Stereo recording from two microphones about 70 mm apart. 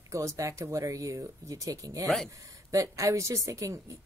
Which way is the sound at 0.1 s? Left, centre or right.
Right.